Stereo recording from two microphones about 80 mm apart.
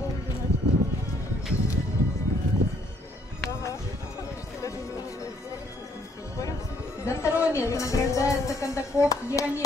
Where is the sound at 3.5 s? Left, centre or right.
Left.